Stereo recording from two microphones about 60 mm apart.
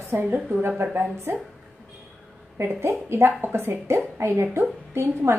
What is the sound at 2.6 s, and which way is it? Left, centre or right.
A woman's voice, right.